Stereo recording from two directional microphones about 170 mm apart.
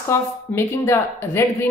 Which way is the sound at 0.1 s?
15° left (ahead or behind).